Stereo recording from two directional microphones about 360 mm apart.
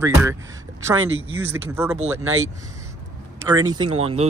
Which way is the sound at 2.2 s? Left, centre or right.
Right.